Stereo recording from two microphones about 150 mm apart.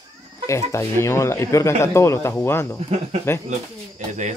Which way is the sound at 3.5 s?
50° right (ahead or behind).